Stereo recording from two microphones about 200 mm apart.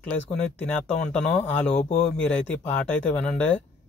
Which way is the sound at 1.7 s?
35° left (ahead or behind).